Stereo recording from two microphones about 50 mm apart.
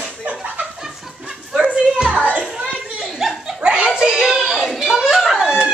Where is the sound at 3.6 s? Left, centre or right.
Right.